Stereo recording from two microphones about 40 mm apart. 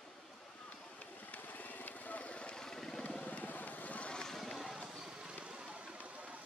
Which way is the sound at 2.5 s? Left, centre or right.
Centre.